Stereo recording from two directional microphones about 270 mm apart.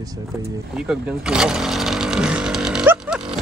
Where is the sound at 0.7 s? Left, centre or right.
Centre.